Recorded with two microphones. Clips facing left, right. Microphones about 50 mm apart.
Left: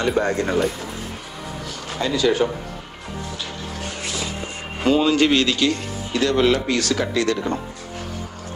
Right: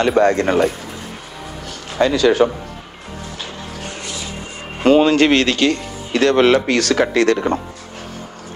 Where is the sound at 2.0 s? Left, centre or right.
Right.